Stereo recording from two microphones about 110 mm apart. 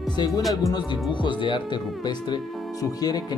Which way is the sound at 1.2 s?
45° left (ahead or behind).